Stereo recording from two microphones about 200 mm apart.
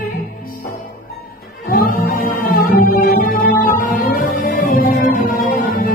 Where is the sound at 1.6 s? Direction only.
45° left (ahead or behind).